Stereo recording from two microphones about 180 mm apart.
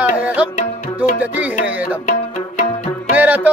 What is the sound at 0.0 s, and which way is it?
Music, 10° right (ahead or behind).